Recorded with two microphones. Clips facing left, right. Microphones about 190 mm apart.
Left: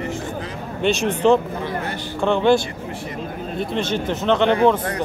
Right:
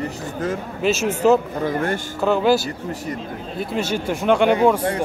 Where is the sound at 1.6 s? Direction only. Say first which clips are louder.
Right 5 dB; 50° right (ahead or behind).